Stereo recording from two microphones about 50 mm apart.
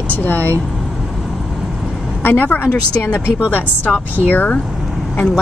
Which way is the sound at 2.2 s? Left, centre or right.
Left.